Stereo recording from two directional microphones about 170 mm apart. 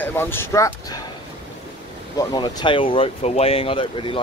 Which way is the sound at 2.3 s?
25° left (ahead or behind).